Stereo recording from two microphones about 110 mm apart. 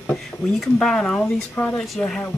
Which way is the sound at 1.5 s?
20° left (ahead or behind).